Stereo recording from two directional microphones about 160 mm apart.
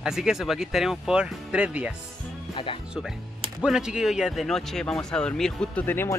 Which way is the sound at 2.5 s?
35° left (ahead or behind).